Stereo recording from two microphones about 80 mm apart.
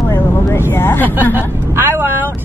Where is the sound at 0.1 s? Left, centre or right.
Left.